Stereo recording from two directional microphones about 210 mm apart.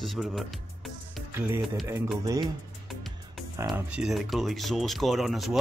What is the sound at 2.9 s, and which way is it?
Music, centre (ahead or behind).